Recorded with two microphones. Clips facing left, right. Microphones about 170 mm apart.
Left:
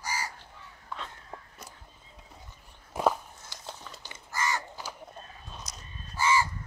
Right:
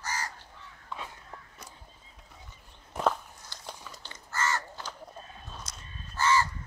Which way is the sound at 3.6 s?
15° right (ahead or behind).